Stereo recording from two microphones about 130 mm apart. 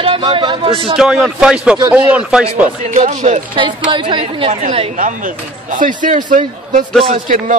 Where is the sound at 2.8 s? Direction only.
80° right.